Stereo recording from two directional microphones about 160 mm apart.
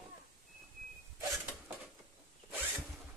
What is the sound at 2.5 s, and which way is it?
Zipper, 10° right (ahead or behind).